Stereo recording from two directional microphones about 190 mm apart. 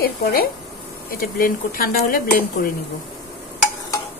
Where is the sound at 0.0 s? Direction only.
55° left (ahead or behind).